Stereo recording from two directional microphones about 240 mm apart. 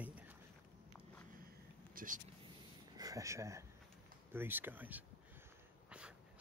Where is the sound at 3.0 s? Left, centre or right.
Centre.